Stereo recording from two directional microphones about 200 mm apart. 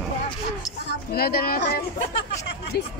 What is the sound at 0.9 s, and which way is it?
Speech, 50° left (ahead or behind).